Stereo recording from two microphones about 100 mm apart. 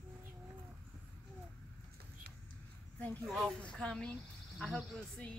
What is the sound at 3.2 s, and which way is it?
A woman's voice, 5° left (ahead or behind).